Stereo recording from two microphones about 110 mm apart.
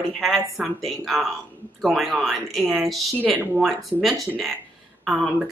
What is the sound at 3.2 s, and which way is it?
Speech, 15° right (ahead or behind).